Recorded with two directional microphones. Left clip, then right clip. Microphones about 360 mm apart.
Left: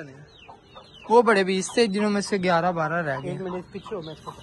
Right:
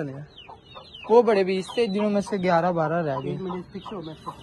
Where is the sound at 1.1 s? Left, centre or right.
Centre.